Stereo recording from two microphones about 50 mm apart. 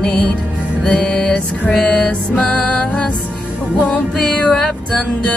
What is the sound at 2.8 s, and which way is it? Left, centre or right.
Music, left.